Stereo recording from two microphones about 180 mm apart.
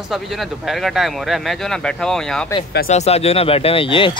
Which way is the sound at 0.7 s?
Centre (ahead or behind).